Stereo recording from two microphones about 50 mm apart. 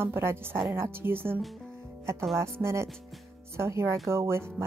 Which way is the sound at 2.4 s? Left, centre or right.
Right.